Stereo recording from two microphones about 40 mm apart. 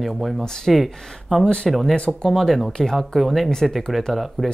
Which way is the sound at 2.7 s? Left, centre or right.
Centre.